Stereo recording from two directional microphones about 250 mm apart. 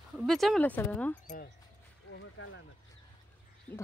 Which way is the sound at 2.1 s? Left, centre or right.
Left.